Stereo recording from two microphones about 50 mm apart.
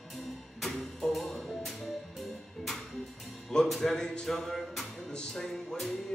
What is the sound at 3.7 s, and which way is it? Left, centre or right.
Music, centre.